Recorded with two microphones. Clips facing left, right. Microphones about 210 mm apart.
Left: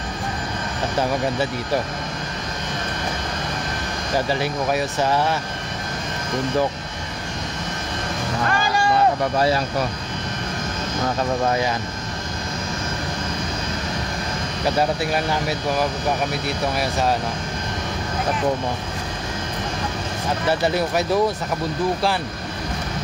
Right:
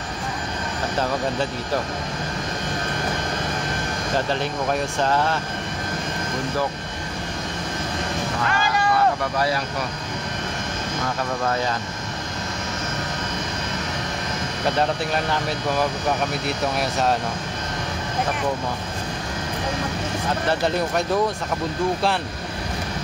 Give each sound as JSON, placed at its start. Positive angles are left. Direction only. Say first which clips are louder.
{"t": 4.3, "sound": "speech", "louder": "left 2 dB", "side_deg": 5}
{"t": 8.5, "sound": "vehicle", "louder": "left 2 dB", "side_deg": 35}
{"t": 14.8, "sound": "speech", "louder": "left 2 dB", "side_deg": 10}
{"t": 20.4, "sound": "speech", "louder": "left 3 dB", "side_deg": 5}